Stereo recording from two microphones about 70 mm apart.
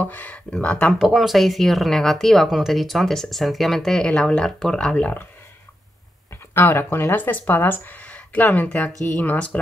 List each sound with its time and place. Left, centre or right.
0.0 s speech: left
0.9 s speech: centre
4.9 s speech: left
6.5 s speech: left